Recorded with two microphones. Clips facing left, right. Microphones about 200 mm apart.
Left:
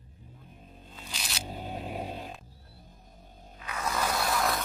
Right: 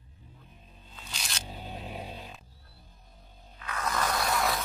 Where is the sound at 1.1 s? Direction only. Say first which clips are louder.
Left 1 dB; centre (ahead or behind).